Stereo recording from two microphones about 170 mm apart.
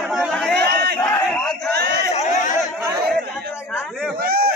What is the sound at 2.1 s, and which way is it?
Chatter, 40° left (ahead or behind).